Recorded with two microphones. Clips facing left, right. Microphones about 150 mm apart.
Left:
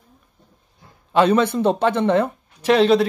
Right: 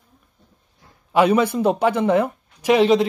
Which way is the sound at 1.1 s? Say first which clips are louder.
Even; 10° right (ahead or behind).